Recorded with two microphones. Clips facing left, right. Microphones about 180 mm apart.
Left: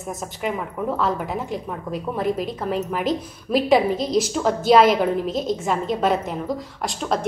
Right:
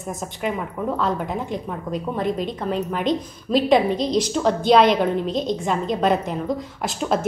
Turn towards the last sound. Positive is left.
turn(degrees=0)  # may be behind; listen again after turning